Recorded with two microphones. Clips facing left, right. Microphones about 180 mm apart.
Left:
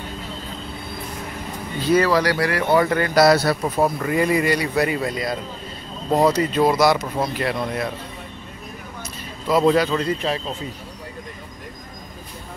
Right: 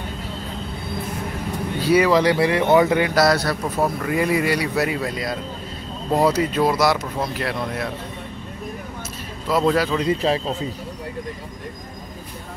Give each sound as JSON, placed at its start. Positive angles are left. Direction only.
{"t": 1.8, "sound": "speech", "side_deg": -10}
{"t": 3.2, "sound": "speech", "side_deg": 5}
{"t": 9.5, "sound": "speech", "side_deg": 0}
{"t": 10.1, "sound": "speech", "side_deg": -35}